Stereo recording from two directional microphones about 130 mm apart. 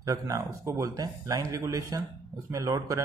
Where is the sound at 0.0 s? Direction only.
25° right (ahead or behind).